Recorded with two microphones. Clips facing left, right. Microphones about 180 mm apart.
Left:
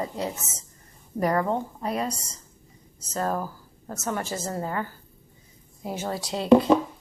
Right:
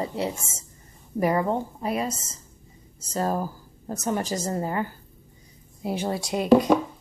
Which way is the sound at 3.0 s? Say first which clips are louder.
Right 2 dB; 30° right (ahead or behind).